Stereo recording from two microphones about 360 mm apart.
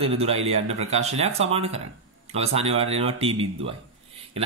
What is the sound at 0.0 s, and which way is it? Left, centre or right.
Speech, centre.